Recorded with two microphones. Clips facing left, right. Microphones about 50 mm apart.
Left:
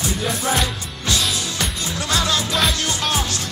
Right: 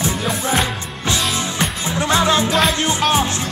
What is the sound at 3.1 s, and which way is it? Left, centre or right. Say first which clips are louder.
Music: right 5 dB; right.